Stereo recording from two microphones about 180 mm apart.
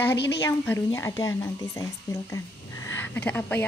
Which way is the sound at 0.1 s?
75° left (ahead or behind).